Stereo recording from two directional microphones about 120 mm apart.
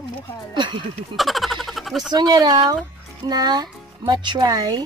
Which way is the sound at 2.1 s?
35° right (ahead or behind).